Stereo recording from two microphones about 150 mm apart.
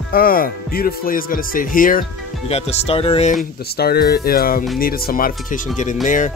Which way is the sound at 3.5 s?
90° left.